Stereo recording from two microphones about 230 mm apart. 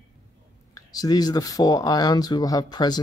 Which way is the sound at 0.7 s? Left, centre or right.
Centre.